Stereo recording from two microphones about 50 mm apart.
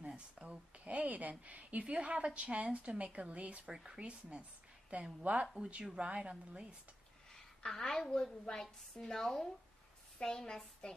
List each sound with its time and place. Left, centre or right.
0.1 s a sound: right
1.4 s a woman's voice: right
3.6 s speech: centre
4.0 s a woman's voice: right
7.3 s a sound: centre
8.1 s speech: centre